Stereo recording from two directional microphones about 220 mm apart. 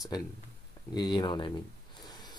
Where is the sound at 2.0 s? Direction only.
20° left (ahead or behind).